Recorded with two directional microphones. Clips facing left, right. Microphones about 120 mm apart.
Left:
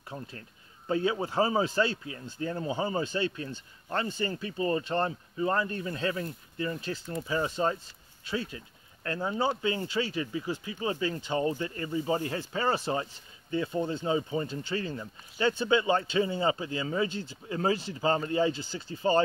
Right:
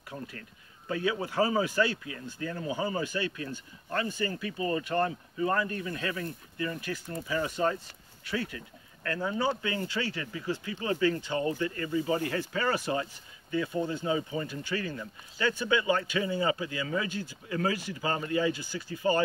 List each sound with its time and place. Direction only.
0.1 s speech: 25° left (ahead or behind)